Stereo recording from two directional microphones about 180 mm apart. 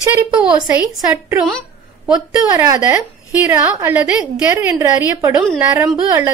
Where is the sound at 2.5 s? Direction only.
15° right (ahead or behind).